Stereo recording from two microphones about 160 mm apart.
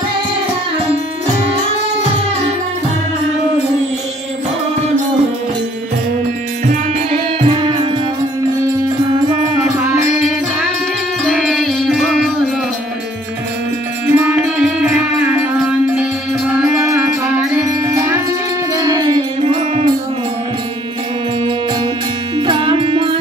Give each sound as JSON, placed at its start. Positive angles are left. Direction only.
{"t": 6.9, "sound": "music", "side_deg": -40}
{"t": 11.2, "sound": "music", "side_deg": 0}
{"t": 14.0, "sound": "music", "side_deg": -10}
{"t": 22.5, "sound": "music", "side_deg": -35}